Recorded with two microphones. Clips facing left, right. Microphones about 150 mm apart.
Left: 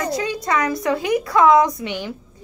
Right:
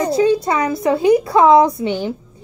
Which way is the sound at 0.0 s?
30° right (ahead or behind).